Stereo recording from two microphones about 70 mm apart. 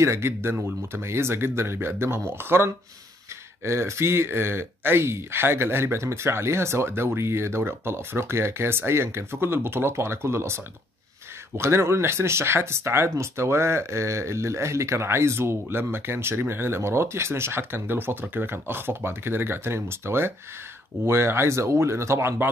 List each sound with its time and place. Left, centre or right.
0.0 s speech: right